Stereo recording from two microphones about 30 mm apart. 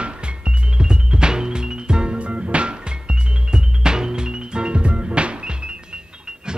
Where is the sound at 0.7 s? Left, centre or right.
Right.